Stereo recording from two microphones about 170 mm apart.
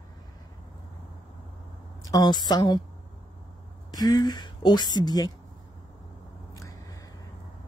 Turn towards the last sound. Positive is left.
turn(degrees=20)  # may be behind; listen again after turning